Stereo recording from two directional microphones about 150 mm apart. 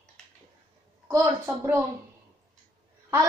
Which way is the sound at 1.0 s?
20° right (ahead or behind).